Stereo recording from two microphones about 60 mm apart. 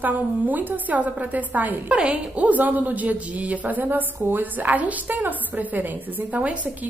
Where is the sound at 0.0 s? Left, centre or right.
Right.